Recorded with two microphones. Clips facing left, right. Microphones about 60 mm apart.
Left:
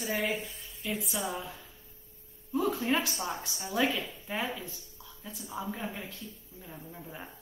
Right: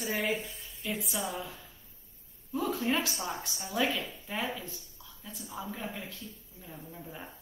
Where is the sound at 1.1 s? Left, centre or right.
Left.